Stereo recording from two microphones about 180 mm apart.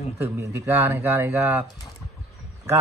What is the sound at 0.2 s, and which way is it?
Speech, 15° right (ahead or behind).